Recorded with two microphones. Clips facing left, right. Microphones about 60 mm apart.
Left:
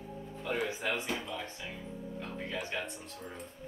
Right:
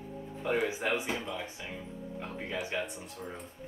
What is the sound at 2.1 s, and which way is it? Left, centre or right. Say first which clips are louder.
Music: right 2 dB; centre.